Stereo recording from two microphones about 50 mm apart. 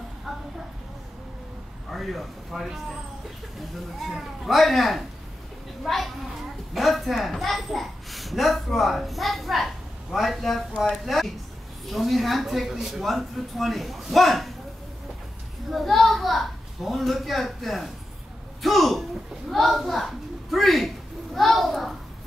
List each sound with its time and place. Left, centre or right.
1.9 s speech: centre
4.0 s a woman's voice: centre
15.7 s speech: centre